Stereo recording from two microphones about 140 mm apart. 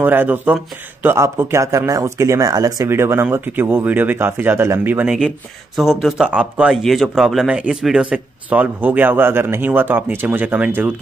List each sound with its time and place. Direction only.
0.0 s speech: 15° right (ahead or behind)
5.8 s speech: centre (ahead or behind)